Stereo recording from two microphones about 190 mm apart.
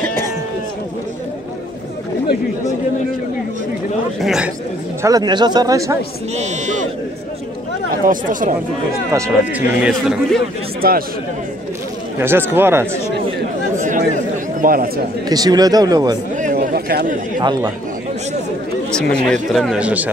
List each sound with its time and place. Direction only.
0.0 s sheep: 10° left (ahead or behind)
4.2 s speech: centre (ahead or behind)
5.0 s speech: 20° right (ahead or behind)
6.3 s speech: 40° right (ahead or behind)
7.9 s speech: 45° right (ahead or behind)
9.1 s speech: 10° right (ahead or behind)
9.9 s speech: 5° left (ahead or behind)
10.8 s speech: 50° right (ahead or behind)
12.2 s speech: 10° right (ahead or behind)
13.7 s chatter: 45° right (ahead or behind)
15.2 s speech: 20° right (ahead or behind)
16.3 s chatter: 40° right (ahead or behind)
17.4 s speech: 20° right (ahead or behind)
18.9 s speech: 5° left (ahead or behind)